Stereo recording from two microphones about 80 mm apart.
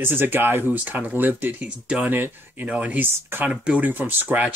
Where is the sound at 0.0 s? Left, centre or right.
Right.